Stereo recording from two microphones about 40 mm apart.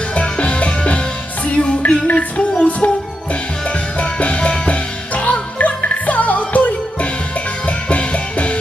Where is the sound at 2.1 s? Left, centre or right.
Left.